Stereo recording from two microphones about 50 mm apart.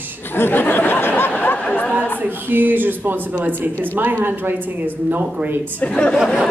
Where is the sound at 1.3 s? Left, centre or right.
Left.